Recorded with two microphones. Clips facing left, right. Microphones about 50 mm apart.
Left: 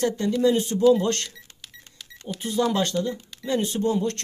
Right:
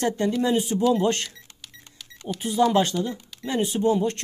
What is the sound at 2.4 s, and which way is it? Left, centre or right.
Speech, centre.